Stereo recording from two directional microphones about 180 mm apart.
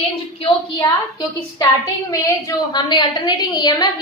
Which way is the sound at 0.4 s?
25° left (ahead or behind).